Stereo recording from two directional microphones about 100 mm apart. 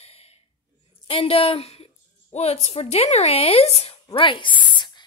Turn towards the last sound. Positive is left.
turn(degrees=55)  # may be behind; listen again after turning